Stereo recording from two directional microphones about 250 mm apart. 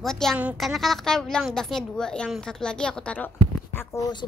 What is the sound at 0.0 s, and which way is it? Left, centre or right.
A woman's voice, centre.